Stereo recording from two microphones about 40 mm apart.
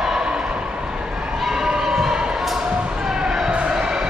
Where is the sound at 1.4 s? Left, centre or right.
Centre.